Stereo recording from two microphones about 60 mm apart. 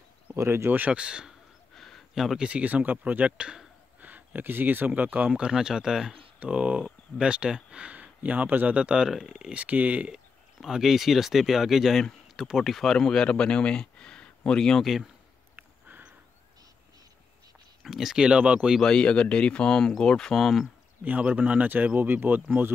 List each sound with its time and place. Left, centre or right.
0.4 s speech: right
0.7 s speech: right
0.9 s speech: centre
1.8 s a sound: centre
2.1 s speech: centre
2.4 s speech: right
4.0 s speech: right
8.7 s speech: centre
10.1 s speech: centre
15.5 s a sound: right
17.8 s speech: centre
18.8 s speech: centre
21.0 s speech: right